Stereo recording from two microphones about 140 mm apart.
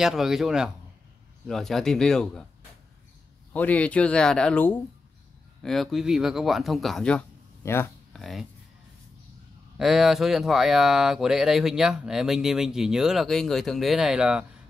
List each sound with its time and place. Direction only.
0.0 s speech: 5° right (ahead or behind)
3.5 s speech: 10° left (ahead or behind)
7.6 s speech: 15° left (ahead or behind)
8.1 s speech: centre (ahead or behind)
9.8 s speech: centre (ahead or behind)